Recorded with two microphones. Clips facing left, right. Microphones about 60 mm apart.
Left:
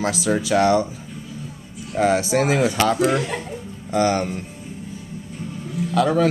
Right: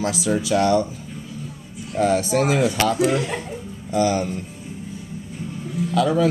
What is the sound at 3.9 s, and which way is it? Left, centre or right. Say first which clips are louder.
Speech: left 1 dB; left.